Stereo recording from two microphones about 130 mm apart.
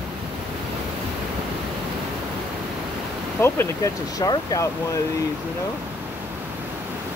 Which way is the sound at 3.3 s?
20° left (ahead or behind).